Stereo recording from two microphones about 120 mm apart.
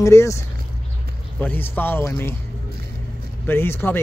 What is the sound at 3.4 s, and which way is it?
Speech, 20° left (ahead or behind).